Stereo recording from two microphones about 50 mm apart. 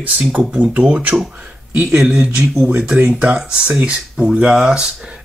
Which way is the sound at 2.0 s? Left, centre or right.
Centre.